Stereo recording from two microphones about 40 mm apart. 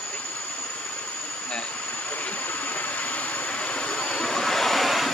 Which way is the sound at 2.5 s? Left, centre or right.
Left.